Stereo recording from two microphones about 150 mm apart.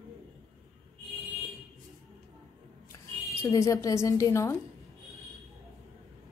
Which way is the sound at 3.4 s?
20° left (ahead or behind).